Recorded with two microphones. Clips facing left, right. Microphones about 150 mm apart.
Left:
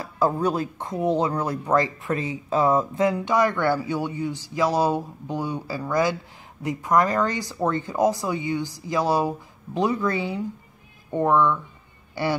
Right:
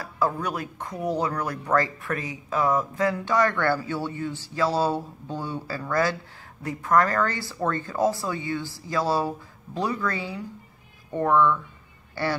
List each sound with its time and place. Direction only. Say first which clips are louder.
0.0 s speech: left 4 dB; 25° left (ahead or behind)